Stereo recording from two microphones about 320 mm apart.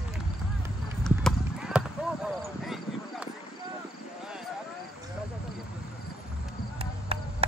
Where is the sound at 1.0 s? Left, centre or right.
Centre.